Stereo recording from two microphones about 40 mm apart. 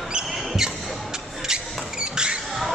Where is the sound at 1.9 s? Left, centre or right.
Right.